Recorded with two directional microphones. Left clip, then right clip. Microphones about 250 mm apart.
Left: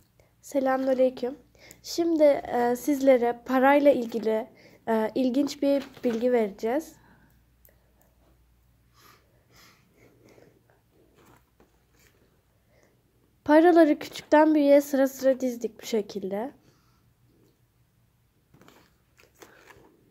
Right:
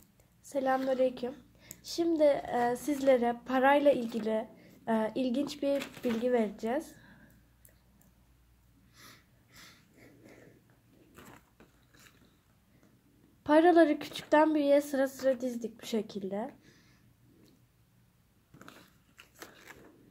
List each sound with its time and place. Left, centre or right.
0.4 s a woman's voice: left
8.9 s snort: centre
13.4 s a woman's voice: left
19.3 s a sound: centre